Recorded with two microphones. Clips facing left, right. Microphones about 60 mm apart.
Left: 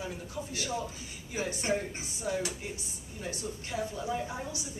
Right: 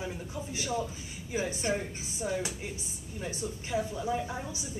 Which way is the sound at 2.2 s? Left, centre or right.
Centre.